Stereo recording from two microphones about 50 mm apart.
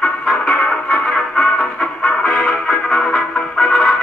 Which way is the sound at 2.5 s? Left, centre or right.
Centre.